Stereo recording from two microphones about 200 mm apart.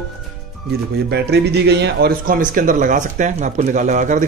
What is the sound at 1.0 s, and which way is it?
Speech, 55° right (ahead or behind).